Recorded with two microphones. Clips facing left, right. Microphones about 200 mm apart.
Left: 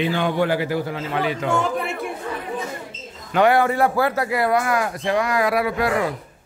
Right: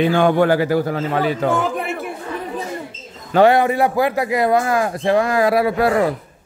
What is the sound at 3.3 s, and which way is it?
A man's voice, 25° right (ahead or behind).